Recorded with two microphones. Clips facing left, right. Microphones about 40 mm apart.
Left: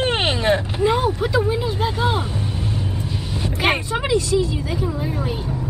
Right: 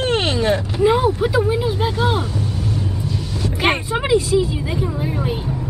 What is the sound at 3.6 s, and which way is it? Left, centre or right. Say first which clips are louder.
A woman's voice: right 1 dB; centre.